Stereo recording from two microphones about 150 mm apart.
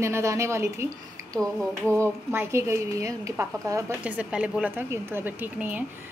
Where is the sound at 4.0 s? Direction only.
10° right (ahead or behind).